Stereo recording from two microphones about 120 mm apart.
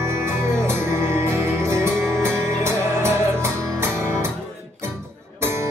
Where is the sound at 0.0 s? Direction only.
20° right (ahead or behind).